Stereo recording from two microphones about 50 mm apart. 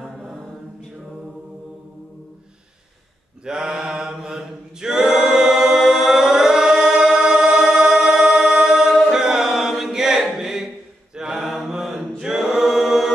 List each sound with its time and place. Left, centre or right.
3.4 s mantra: centre
10.3 s a sound: centre
11.1 s mantra: centre
12.2 s choir: centre